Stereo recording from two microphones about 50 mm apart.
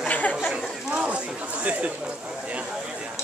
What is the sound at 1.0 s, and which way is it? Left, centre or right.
Chatter, right.